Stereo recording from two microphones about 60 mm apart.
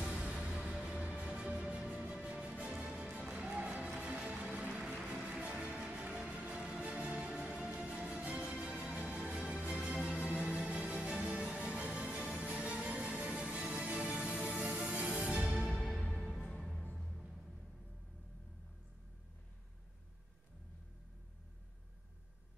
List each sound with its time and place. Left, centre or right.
0.0 s music: centre
4.8 s music: centre
8.3 s music: centre
8.5 s music: centre
15.9 s music: centre